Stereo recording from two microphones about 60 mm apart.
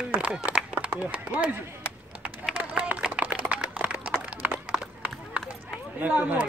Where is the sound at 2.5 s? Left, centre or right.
Right.